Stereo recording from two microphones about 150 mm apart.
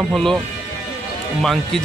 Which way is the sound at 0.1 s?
Centre (ahead or behind).